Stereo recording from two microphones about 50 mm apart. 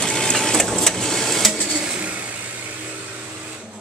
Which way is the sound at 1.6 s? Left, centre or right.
Centre.